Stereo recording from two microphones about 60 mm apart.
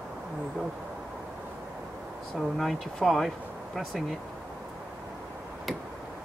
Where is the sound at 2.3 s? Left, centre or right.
Centre.